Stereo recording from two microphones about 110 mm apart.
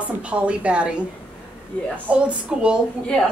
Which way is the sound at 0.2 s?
10° right (ahead or behind).